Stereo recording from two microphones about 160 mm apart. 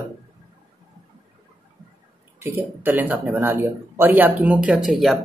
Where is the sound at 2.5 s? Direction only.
10° right (ahead or behind).